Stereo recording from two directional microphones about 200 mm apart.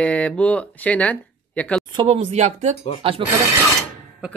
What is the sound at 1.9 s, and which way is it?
Speech, 30° right (ahead or behind).